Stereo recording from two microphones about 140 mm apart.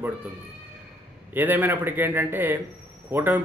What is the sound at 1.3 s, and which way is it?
Speech, 15° right (ahead or behind).